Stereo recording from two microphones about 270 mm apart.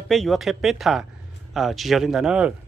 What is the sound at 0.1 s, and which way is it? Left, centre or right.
Speech, centre.